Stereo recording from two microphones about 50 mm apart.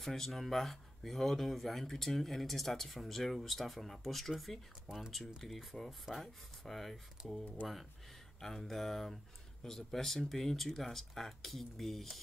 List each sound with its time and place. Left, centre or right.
0.0 s speech: centre